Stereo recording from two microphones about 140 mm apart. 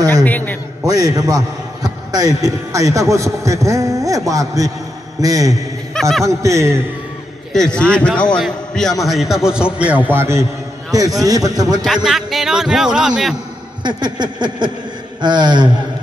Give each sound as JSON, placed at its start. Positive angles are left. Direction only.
{"t": 0.1, "sound": "a man's voice", "side_deg": 15}
{"t": 0.8, "sound": "a man's voice", "side_deg": -25}
{"t": 5.9, "sound": "speech", "side_deg": 5}
{"t": 6.2, "sound": "a man's voice", "side_deg": -20}
{"t": 7.5, "sound": "a man's voice", "side_deg": 5}
{"t": 11.8, "sound": "a man's voice", "side_deg": 0}
{"t": 13.8, "sound": "a sound", "side_deg": -30}